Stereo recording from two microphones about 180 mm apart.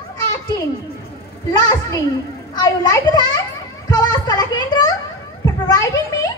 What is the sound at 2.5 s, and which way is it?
Speech, 20° left (ahead or behind).